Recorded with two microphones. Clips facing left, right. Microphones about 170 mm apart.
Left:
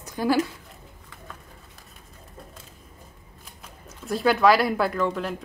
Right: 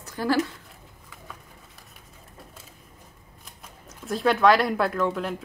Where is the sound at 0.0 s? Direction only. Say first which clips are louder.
Left 2 dB; 15° left (ahead or behind).